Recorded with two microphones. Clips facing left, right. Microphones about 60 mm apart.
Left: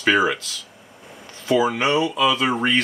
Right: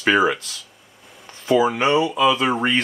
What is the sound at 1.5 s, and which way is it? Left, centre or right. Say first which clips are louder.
Speech: right 2 dB; centre.